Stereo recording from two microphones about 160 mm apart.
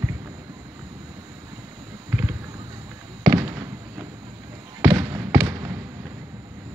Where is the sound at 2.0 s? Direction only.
15° right (ahead or behind).